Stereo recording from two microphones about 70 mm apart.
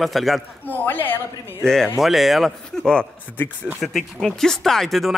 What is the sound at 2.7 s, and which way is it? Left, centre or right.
Speech, centre.